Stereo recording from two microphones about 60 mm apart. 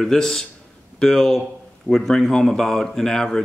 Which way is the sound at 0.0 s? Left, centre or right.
Centre.